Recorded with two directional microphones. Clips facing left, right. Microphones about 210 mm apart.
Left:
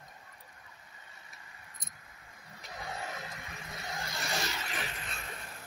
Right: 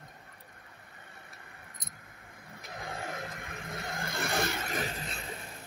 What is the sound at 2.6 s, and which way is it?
Vehicle, 55° right (ahead or behind).